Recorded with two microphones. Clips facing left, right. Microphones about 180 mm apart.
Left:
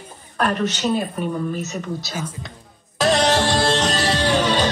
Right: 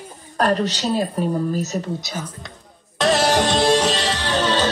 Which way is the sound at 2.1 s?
10° left (ahead or behind).